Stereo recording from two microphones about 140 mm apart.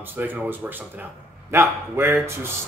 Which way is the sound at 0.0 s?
15° right (ahead or behind).